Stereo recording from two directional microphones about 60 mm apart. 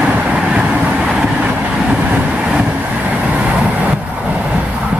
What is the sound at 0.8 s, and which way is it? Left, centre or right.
Train, centre.